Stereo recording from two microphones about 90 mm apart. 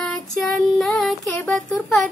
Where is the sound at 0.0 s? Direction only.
5° left (ahead or behind).